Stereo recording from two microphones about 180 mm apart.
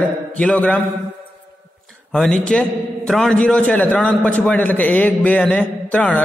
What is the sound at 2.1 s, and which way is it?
A man's voice, 5° left (ahead or behind).